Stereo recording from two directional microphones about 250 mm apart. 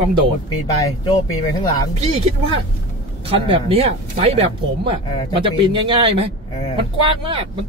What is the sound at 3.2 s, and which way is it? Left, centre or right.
Speech, right.